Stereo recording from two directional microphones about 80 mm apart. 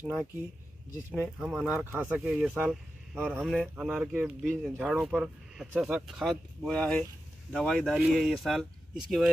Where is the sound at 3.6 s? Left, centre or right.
Centre.